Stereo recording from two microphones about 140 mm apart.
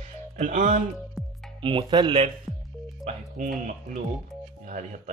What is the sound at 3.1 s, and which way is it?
Speech, 70° right (ahead or behind).